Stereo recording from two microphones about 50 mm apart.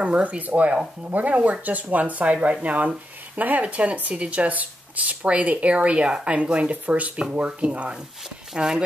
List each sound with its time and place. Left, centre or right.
0.0 s speech: right